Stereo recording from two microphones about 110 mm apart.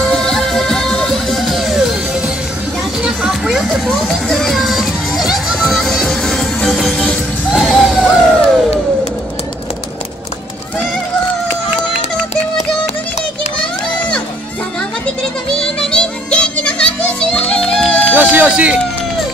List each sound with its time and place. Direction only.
0.0 s music: 5° left (ahead or behind)
7.7 s a sound: centre (ahead or behind)
15.8 s music: 10° left (ahead or behind)
18.1 s music: 20° right (ahead or behind)